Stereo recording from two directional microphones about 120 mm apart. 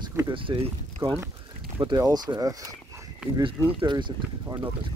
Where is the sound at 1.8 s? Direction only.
35° right (ahead or behind).